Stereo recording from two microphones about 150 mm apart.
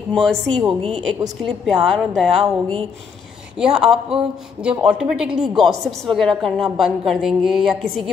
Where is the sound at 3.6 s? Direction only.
5° right (ahead or behind).